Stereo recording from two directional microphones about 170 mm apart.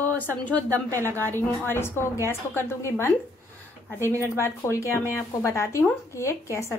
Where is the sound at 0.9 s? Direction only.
15° right (ahead or behind).